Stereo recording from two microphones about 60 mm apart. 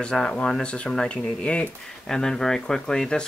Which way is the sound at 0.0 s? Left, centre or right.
Centre.